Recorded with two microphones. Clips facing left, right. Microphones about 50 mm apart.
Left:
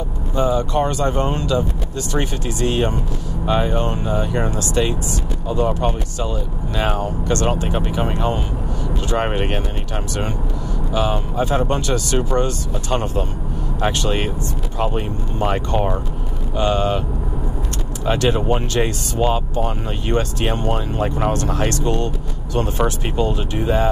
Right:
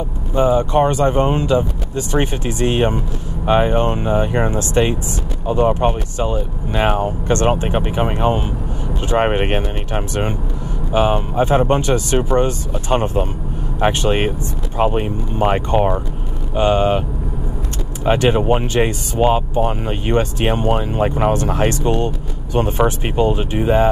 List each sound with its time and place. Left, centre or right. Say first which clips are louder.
0.3 s speech: right 4 dB; right
18.0 s speech: right 4 dB; right